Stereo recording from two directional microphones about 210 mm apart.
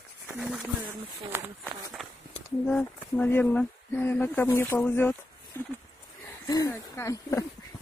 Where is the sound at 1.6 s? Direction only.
Centre (ahead or behind).